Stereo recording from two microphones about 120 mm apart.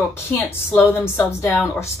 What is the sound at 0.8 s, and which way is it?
Speech, 20° left (ahead or behind).